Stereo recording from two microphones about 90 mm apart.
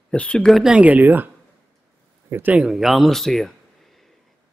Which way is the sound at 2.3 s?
20° right (ahead or behind).